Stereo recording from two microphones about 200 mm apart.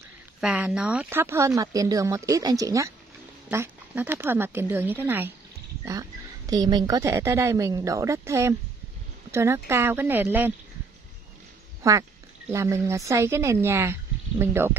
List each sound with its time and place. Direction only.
0.4 s a woman's voice: 5° right (ahead or behind)
11.8 s a woman's voice: 15° right (ahead or behind)